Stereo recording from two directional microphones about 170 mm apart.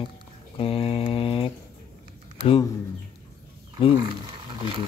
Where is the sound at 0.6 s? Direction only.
35° left (ahead or behind).